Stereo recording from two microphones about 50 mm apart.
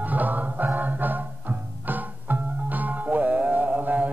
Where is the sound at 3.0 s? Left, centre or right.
Right.